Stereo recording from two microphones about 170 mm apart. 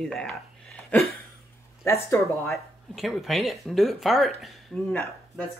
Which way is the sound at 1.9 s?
15° left (ahead or behind).